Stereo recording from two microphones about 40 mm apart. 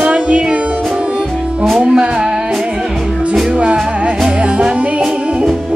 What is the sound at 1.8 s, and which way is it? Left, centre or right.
Music, centre.